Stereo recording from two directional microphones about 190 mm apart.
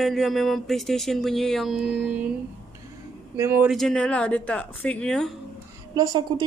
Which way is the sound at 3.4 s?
15° right (ahead or behind).